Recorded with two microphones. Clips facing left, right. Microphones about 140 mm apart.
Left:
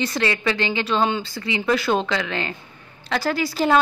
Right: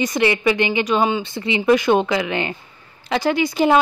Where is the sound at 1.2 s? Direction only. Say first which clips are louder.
Right 6 dB; 20° right (ahead or behind).